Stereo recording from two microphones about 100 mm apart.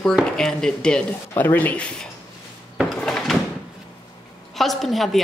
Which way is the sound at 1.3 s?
20° left (ahead or behind).